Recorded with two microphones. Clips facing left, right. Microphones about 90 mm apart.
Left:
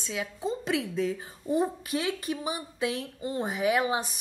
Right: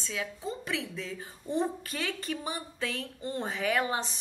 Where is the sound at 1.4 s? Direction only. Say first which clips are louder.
Left 3 dB; 10° left (ahead or behind).